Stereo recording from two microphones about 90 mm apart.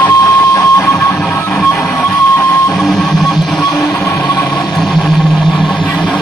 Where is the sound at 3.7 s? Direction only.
35° left (ahead or behind).